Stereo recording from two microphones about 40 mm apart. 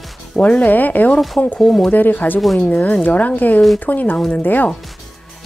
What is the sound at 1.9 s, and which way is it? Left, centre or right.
A woman's voice, left.